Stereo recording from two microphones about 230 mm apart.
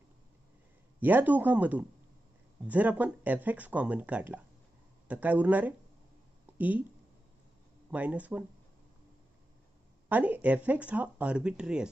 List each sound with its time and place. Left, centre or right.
0.9 s speech: centre
7.9 s speech: centre
10.0 s speech: centre